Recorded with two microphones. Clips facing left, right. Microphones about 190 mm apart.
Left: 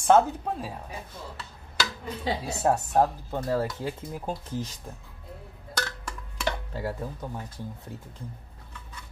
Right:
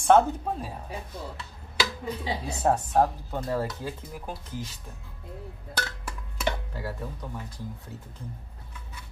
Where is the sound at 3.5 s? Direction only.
20° left (ahead or behind).